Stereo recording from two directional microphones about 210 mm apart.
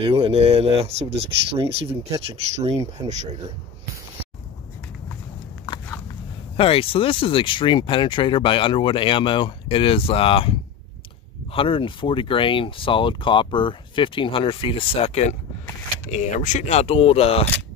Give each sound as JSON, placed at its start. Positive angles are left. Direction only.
{"t": 0.0, "sound": "speech", "side_deg": -25}
{"t": 6.5, "sound": "speech", "side_deg": 25}
{"t": 11.5, "sound": "speech", "side_deg": 25}